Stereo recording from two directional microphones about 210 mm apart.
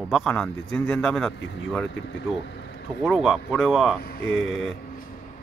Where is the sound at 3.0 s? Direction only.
Centre (ahead or behind).